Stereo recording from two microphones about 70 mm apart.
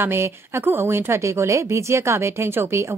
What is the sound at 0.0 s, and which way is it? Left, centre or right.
Speech, right.